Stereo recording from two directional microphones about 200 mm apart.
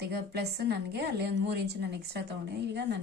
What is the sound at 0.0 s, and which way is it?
A woman's voice, 55° right (ahead or behind).